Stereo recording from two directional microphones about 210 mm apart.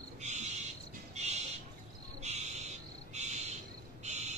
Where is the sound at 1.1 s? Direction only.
30° right (ahead or behind).